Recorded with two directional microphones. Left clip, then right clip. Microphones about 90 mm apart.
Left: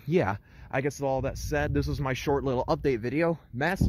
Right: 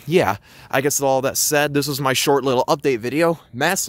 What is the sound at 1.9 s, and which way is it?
Speech, 90° right.